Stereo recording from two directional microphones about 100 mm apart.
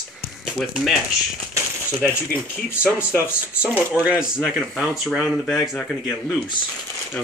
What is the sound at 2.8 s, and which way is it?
Speech, 15° right (ahead or behind).